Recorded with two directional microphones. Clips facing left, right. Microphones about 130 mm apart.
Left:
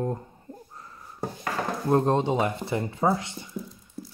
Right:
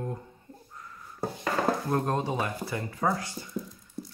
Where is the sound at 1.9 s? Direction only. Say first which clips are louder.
Left 6 dB; 25° left (ahead or behind).